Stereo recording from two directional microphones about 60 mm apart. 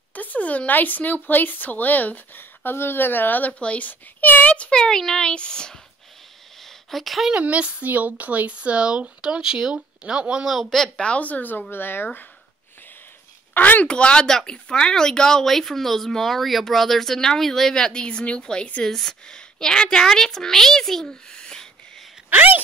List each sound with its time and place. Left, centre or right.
0.1 s speech: left
6.6 s a sound: centre
7.3 s speech: right
10.5 s speech: centre
11.0 s speech: left
13.5 s speech: left
13.8 s speech: centre
22.3 s speech: right